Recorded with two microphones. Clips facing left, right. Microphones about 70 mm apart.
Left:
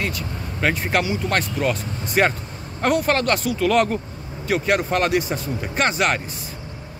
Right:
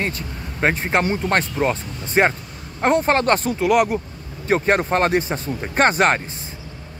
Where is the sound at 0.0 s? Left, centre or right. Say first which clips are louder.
Right 1 dB; right.